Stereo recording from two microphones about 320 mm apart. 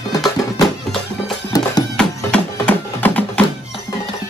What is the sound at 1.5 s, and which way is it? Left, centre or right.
Music, centre.